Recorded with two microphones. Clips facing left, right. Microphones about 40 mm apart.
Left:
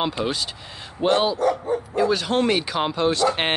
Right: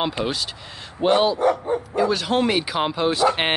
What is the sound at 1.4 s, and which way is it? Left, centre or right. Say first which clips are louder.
Speech: right 1 dB; right.